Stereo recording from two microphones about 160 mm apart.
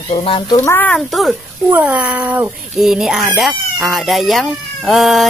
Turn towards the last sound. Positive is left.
turn(degrees=0)  # may be behind; listen again after turning